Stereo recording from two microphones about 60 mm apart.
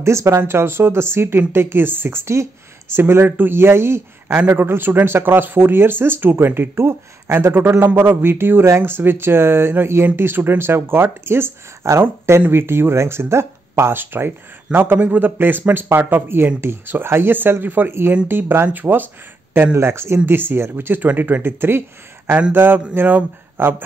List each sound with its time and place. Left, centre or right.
0.0 s speech: right
0.4 s speech: right
19.9 s speech: right